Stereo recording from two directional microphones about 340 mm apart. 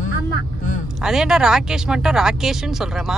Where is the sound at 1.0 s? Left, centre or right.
Centre.